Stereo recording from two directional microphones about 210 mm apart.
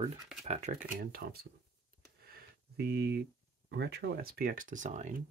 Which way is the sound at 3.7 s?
50° right (ahead or behind).